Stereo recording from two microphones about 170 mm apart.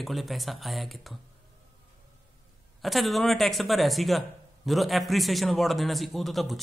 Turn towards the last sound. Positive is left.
turn(degrees=0)  # may be behind; listen again after turning